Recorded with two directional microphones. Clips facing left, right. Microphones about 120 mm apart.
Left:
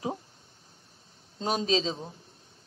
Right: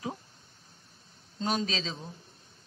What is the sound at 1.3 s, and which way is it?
Speech, 25° left (ahead or behind).